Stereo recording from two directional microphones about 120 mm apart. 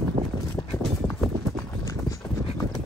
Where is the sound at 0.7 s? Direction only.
5° left (ahead or behind).